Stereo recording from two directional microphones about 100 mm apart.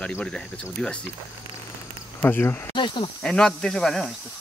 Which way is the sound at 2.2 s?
20° left (ahead or behind).